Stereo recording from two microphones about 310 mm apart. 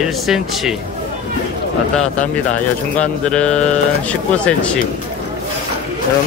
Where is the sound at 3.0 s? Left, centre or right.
Centre.